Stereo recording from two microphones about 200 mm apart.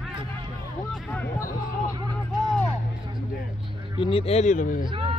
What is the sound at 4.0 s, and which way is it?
Speech, 25° left (ahead or behind).